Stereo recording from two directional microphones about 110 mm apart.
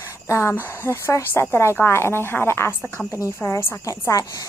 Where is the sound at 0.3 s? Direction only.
25° left (ahead or behind).